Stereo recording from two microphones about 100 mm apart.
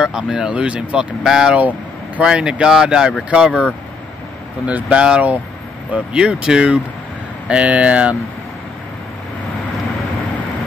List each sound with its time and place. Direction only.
0.0 s speech: 5° right (ahead or behind)
4.6 s speech: 10° right (ahead or behind)